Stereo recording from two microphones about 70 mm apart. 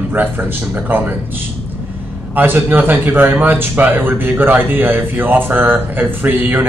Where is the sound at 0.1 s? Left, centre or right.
Right.